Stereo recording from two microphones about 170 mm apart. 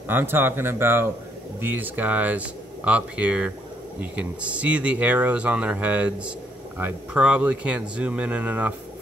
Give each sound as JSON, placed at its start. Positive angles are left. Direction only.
{"t": 0.1, "sound": "speech", "side_deg": -10}